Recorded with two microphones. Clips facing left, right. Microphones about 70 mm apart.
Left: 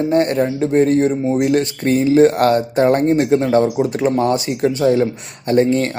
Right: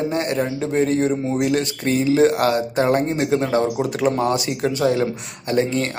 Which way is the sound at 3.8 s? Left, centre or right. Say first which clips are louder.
Left 4 dB; left.